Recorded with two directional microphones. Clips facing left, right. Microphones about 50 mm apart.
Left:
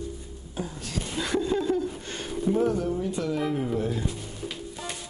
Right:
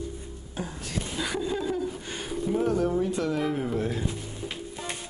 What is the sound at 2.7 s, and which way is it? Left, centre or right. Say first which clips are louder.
Speech: right 3 dB; right.